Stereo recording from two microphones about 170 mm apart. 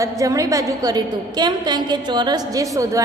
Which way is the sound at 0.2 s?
20° right (ahead or behind).